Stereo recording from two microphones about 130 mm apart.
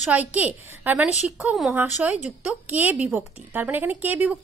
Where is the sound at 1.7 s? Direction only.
15° right (ahead or behind).